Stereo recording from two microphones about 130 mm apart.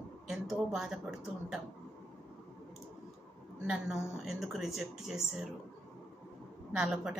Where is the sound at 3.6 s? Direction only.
5° right (ahead or behind).